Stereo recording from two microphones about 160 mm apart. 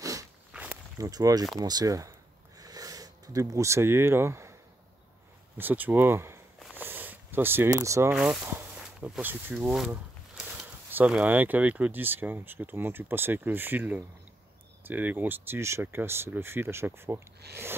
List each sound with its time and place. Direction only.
0.0 s walk: 20° right (ahead or behind)
0.5 s walk: 10° right (ahead or behind)
0.9 s speech: 20° right (ahead or behind)
2.6 s a sound: 20° right (ahead or behind)
5.6 s speech: 10° right (ahead or behind)
6.8 s sniff: 10° right (ahead or behind)
8.1 s speech: 5° right (ahead or behind)
17.4 s a sound: 90° right